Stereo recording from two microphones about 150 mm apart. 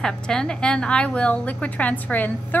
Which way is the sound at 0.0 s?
5° left (ahead or behind).